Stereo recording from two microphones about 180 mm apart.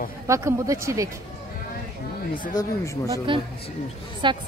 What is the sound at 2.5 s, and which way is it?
Speech, 20° left (ahead or behind).